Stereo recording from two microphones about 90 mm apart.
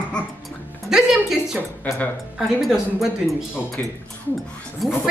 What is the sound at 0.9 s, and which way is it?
A woman's voice, 5° right (ahead or behind).